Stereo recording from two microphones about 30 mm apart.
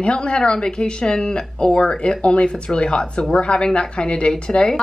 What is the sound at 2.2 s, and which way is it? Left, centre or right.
A woman's voice, left.